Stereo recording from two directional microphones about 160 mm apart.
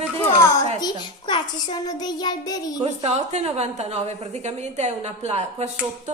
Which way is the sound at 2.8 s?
45° right (ahead or behind).